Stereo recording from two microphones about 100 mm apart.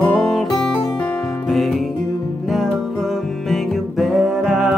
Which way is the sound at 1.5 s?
Centre (ahead or behind).